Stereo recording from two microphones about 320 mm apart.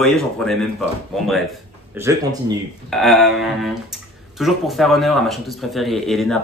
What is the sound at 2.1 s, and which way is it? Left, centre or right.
Speech, centre.